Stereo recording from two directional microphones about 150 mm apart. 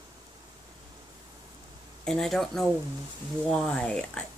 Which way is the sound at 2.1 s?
5° left (ahead or behind).